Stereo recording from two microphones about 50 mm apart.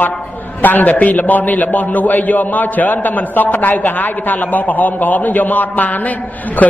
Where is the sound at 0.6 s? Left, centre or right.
Left.